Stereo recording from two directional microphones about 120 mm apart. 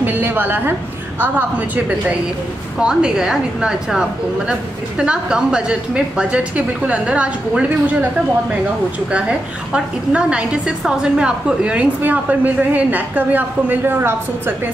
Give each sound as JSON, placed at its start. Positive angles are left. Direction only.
{"t": 0.0, "sound": "a sound", "side_deg": -15}
{"t": 2.8, "sound": "a woman's voice", "side_deg": -5}
{"t": 9.7, "sound": "a woman's voice", "side_deg": -10}